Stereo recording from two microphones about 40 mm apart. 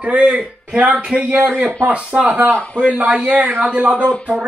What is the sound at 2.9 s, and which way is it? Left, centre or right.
Speech, right.